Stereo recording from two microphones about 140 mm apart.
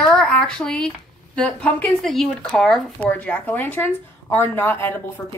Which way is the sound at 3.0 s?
10° left (ahead or behind).